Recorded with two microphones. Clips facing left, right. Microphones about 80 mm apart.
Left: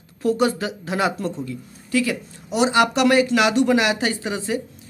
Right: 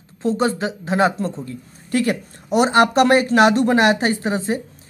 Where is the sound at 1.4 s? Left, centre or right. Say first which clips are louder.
Left 1 dB; right.